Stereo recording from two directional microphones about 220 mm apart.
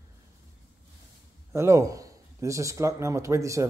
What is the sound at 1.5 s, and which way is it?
A man's voice, 15° right (ahead or behind).